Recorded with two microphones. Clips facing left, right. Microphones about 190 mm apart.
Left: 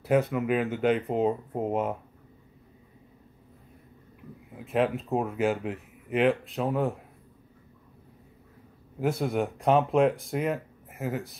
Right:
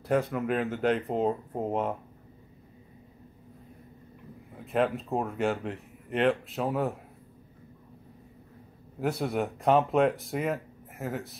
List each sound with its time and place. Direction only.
0.0 s speech: centre (ahead or behind)
4.6 s speech: centre (ahead or behind)
9.0 s speech: centre (ahead or behind)